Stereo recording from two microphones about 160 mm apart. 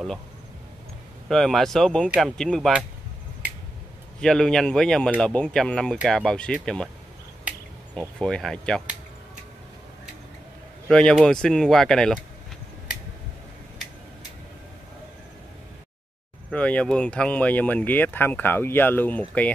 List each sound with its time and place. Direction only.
1.3 s speech: centre (ahead or behind)
4.2 s speech: 5° left (ahead or behind)
8.2 s speech: 5° left (ahead or behind)
10.9 s speech: 5° left (ahead or behind)
16.5 s speech: 5° left (ahead or behind)